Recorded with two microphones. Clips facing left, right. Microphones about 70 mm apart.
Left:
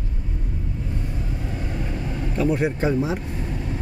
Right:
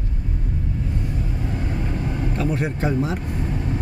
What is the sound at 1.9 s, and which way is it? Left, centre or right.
Vehicle, right.